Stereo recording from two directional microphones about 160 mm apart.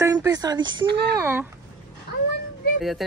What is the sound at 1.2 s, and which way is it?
Speech, 15° right (ahead or behind).